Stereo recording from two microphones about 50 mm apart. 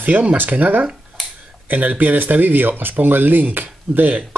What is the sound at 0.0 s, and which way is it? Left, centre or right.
Speech, right.